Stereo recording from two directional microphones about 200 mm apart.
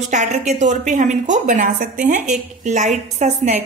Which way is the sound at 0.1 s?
35° right (ahead or behind).